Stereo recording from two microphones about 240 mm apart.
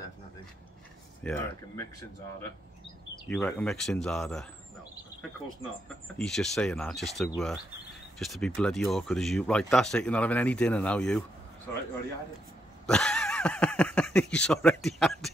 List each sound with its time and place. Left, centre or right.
1.2 s speech: centre
3.3 s speech: centre
6.1 s speech: centre
12.8 s speech: centre